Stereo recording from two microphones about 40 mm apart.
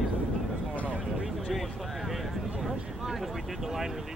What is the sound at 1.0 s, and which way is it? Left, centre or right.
Vehicle, centre.